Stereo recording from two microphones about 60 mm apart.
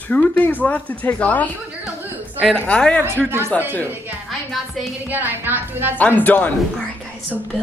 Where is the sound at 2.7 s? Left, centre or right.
Centre.